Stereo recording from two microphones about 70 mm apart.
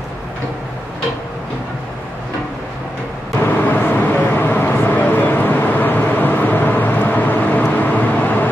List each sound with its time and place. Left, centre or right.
3.4 s vehicle: left